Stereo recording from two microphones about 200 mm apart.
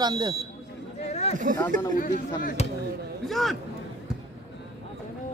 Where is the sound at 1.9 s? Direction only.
40° left (ahead or behind).